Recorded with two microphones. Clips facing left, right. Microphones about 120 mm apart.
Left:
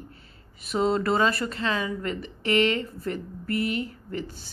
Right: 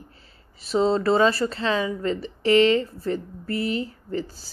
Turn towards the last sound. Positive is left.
turn(degrees=-35)  # may be behind; listen again after turning